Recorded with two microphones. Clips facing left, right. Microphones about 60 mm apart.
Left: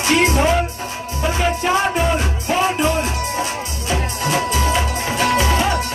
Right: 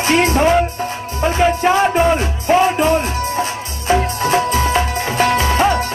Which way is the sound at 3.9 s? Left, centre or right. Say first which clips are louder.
Right 6 dB; right.